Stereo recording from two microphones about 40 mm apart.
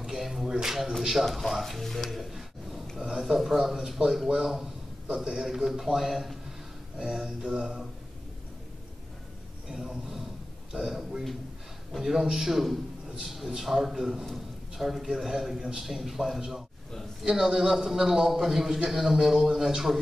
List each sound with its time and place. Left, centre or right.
0.0 s a sound: centre
0.5 s speech: centre
1.2 s a man's voice: centre
9.7 s a man's voice: centre